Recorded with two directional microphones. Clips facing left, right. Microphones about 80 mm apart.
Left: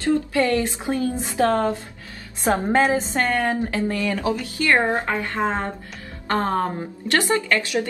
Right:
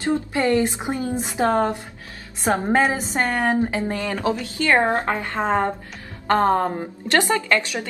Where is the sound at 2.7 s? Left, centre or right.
Centre.